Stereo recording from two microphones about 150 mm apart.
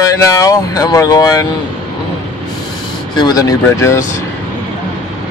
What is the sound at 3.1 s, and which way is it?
Speech, 25° left (ahead or behind).